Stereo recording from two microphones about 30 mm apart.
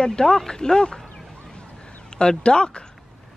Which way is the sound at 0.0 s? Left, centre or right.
Left.